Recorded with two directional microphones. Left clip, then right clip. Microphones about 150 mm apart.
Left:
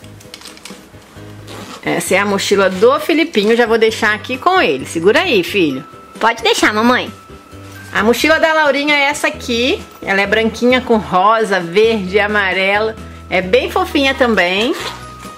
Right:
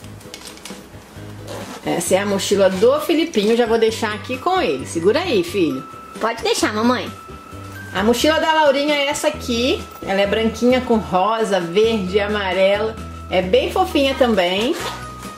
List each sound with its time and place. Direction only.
1.9 s a woman's voice: 30° left (ahead or behind)
14.7 s music: 5° left (ahead or behind)